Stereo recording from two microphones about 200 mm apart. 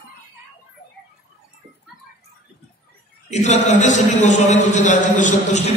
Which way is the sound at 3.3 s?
35° left (ahead or behind).